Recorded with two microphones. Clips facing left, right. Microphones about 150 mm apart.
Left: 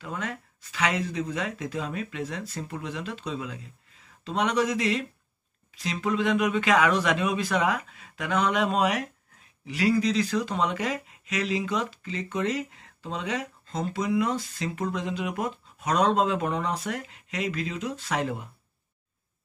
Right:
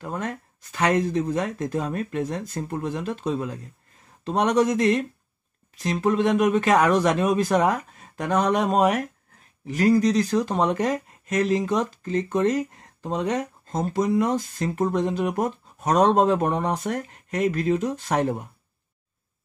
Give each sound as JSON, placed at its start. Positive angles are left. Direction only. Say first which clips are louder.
{"t": 0.0, "sound": "speech", "louder": "right 4 dB", "side_deg": -45}